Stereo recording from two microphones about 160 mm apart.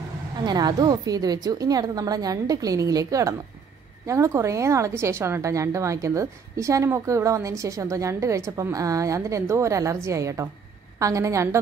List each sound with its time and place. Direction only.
0.4 s a woman's voice: 25° right (ahead or behind)